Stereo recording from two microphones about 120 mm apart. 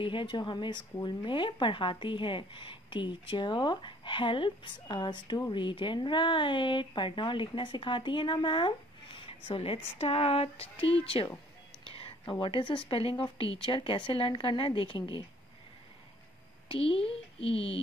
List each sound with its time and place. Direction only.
0.0 s a woman's voice: 45° left (ahead or behind)
16.6 s speech: 50° left (ahead or behind)